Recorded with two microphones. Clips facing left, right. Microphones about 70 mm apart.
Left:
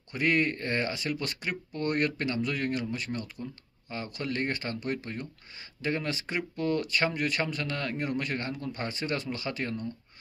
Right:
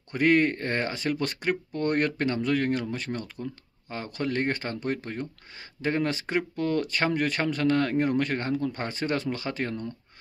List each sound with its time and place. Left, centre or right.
0.1 s speech: right